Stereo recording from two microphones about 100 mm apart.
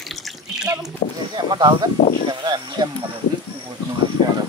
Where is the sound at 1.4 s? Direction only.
45° right (ahead or behind).